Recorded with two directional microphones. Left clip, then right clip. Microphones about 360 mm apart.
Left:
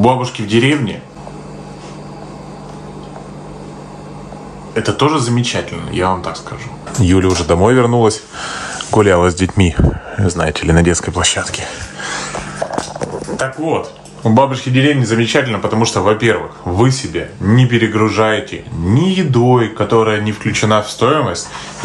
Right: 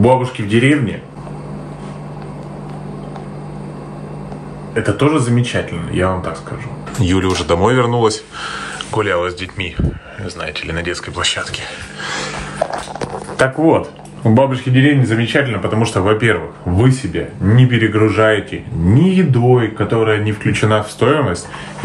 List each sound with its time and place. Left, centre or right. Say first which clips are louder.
0.0 s speech: even; centre
4.7 s speech: left 1 dB; centre
14.2 s speech: left 1 dB; centre